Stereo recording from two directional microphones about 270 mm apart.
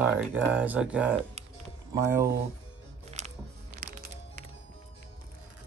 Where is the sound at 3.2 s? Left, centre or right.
Right.